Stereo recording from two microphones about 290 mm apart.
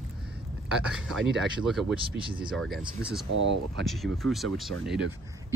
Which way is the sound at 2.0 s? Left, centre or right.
Centre.